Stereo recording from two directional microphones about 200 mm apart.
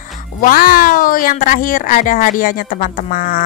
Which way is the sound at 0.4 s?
45° left (ahead or behind).